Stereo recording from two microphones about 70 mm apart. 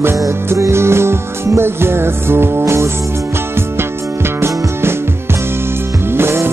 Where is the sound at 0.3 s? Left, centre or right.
Right.